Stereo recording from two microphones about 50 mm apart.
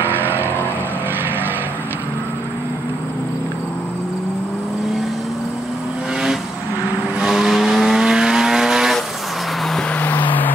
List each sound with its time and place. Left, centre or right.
0.0 s vehicle: right
7.2 s vehicle: centre
9.9 s vehicle: left